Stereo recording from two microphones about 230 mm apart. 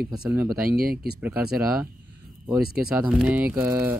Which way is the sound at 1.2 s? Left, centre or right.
Centre.